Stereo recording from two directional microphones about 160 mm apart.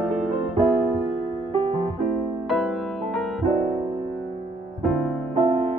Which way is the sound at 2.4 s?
Centre (ahead or behind).